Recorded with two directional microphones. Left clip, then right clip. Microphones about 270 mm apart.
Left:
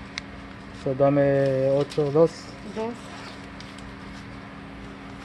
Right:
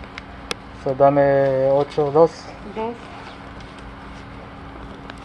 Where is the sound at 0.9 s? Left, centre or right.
Left.